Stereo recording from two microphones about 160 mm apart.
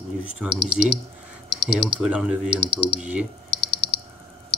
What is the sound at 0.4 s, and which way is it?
Speech, 5° right (ahead or behind).